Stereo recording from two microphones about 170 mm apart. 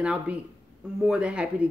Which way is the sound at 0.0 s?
5° right (ahead or behind).